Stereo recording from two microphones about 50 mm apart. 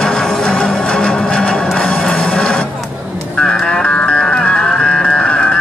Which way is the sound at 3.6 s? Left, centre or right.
Centre.